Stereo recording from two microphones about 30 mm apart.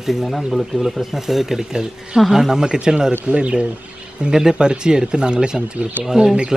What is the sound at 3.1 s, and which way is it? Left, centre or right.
Speech, right.